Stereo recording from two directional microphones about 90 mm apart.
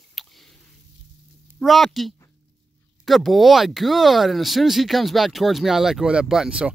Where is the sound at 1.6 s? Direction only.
Centre (ahead or behind).